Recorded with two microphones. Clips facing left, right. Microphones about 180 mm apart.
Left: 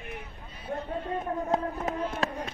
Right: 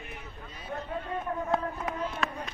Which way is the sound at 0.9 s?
30° left (ahead or behind).